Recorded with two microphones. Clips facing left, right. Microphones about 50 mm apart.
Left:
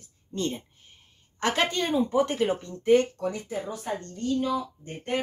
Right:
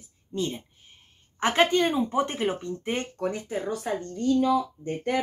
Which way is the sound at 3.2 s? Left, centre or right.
Right.